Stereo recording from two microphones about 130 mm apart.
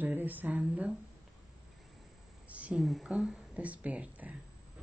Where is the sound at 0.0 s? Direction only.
15° right (ahead or behind).